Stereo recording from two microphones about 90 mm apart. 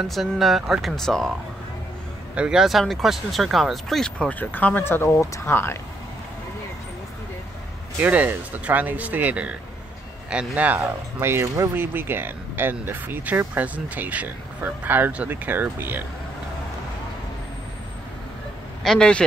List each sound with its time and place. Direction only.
0.0 s speech: centre (ahead or behind)
2.3 s speech: 10° right (ahead or behind); by 4.4 s 10° left (ahead or behind)
4.4 s speech: 20° left (ahead or behind)
8.0 s speech: 15° right (ahead or behind)
11.1 s speech: 30° right (ahead or behind)
18.8 s a man's voice: 5° left (ahead or behind)